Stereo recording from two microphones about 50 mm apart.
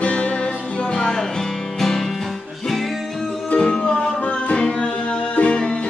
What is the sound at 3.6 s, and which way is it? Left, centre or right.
Music, centre.